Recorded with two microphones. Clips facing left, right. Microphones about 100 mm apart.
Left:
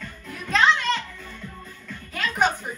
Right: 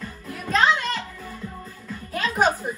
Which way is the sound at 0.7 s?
40° right (ahead or behind).